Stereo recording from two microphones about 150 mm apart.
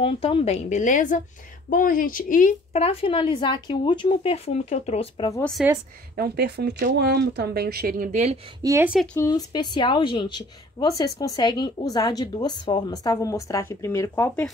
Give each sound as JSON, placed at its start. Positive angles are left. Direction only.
{"t": 0.0, "sound": "speech", "side_deg": 35}
{"t": 1.7, "sound": "speech", "side_deg": 70}
{"t": 2.7, "sound": "a woman's voice", "side_deg": 40}
{"t": 5.4, "sound": "speech", "side_deg": 0}
{"t": 6.1, "sound": "speech", "side_deg": -90}
{"t": 8.6, "sound": "speech", "side_deg": -25}
{"t": 9.2, "sound": "a woman's voice", "side_deg": 25}